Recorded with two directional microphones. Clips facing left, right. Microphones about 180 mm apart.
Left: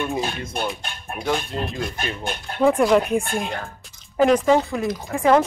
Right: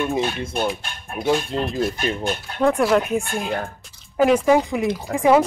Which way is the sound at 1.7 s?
5° right (ahead or behind).